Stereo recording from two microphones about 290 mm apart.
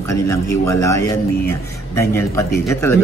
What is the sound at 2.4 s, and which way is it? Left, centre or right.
Speech, centre.